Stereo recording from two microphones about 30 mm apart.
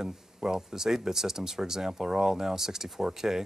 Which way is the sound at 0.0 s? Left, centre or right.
Centre.